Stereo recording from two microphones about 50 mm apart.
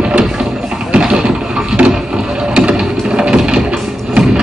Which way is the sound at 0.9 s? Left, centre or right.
Centre.